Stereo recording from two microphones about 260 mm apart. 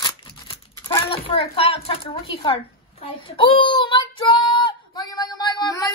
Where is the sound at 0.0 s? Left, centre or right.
Centre.